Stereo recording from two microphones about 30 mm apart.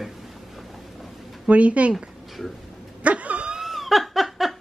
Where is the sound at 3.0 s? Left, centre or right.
Right.